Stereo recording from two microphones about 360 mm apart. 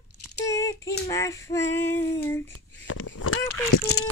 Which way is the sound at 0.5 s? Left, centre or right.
Centre.